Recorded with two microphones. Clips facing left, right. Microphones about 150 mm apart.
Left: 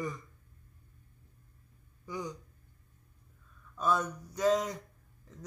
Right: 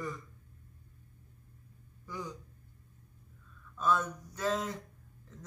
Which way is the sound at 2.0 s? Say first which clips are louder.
Left 3 dB; 15° left (ahead or behind).